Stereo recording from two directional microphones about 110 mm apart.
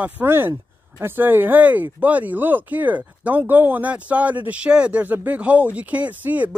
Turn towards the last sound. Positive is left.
turn(degrees=-15)  # may be behind; listen again after turning